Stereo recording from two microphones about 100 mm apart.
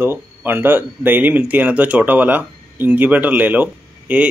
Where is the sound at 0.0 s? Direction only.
20° right (ahead or behind).